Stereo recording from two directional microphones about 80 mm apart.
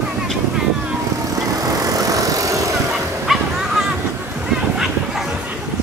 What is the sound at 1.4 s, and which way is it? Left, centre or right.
Vehicle, right.